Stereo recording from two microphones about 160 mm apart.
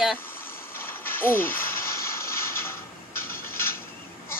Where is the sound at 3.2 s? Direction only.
15° left (ahead or behind).